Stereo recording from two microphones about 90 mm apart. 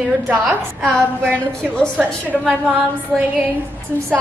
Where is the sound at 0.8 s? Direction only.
10° left (ahead or behind).